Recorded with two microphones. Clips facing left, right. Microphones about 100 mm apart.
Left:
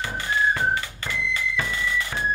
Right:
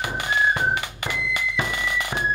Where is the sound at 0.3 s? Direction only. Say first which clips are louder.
Right 1 dB; 15° right (ahead or behind).